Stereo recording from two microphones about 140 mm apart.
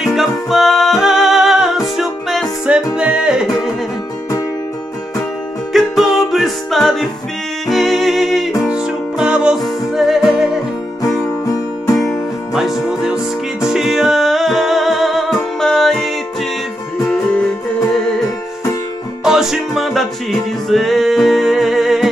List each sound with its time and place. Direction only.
0.0 s music: centre (ahead or behind)
5.7 s music: centre (ahead or behind)
11.0 s music: 25° left (ahead or behind)
12.5 s music: centre (ahead or behind)
19.2 s music: 5° right (ahead or behind)